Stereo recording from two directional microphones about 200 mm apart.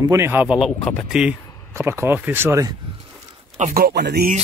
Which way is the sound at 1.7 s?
15° right (ahead or behind).